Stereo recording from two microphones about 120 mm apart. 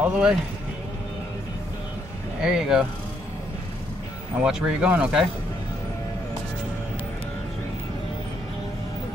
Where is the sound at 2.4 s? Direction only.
5° right (ahead or behind).